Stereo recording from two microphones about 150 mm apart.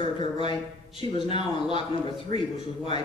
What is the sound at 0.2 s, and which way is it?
A man's voice, 35° left (ahead or behind).